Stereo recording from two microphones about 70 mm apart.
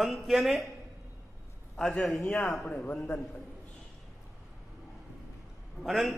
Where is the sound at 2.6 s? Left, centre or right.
Left.